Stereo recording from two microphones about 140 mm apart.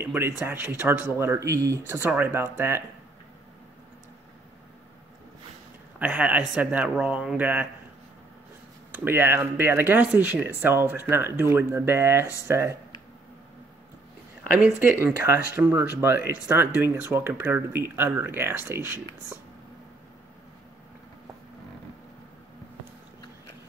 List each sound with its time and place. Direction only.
0.0 s speech: 15° right (ahead or behind)
5.9 s speech: 10° right (ahead or behind)
8.9 s speech: 15° right (ahead or behind)
14.8 s speech: 15° right (ahead or behind)